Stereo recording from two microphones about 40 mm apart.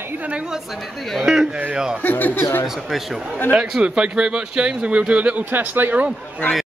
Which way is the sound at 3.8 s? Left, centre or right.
Right.